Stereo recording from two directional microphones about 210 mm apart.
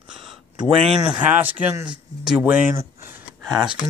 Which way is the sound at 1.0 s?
5° right (ahead or behind).